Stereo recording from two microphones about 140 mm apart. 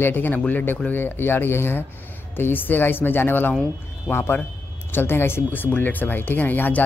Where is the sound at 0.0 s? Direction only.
15° left (ahead or behind).